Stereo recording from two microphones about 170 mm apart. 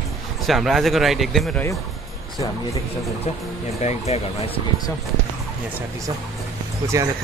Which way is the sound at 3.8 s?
40° left (ahead or behind).